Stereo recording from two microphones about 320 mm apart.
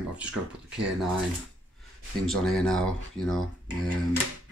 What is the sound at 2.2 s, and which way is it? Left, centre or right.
Speech, centre.